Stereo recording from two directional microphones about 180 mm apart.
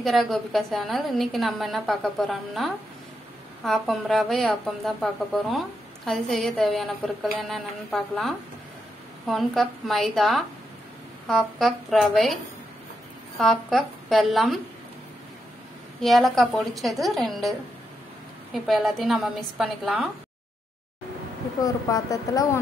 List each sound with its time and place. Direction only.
0.0 s a woman's voice: centre (ahead or behind)
13.4 s a woman's voice: centre (ahead or behind)
16.0 s a woman's voice: centre (ahead or behind)
21.5 s speech: 20° left (ahead or behind)